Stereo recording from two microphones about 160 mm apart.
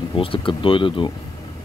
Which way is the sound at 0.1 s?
35° left (ahead or behind).